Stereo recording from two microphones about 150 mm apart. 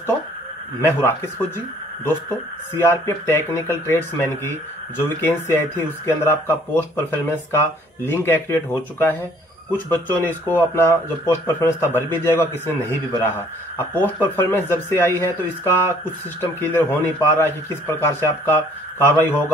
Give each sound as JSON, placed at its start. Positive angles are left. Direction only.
{"t": 0.7, "sound": "speech", "side_deg": 15}
{"t": 2.7, "sound": "speech", "side_deg": 15}
{"t": 5.8, "sound": "speech", "side_deg": 15}